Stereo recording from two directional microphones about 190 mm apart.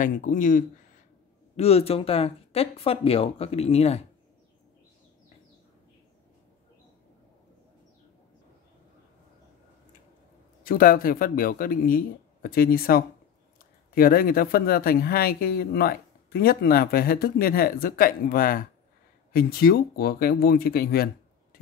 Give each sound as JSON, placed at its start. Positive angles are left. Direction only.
{"t": 0.0, "sound": "speech", "side_deg": 45}
{"t": 1.6, "sound": "speech", "side_deg": 30}
{"t": 10.6, "sound": "speech", "side_deg": 50}